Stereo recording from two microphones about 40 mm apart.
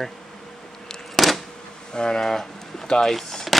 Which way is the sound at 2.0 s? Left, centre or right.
Centre.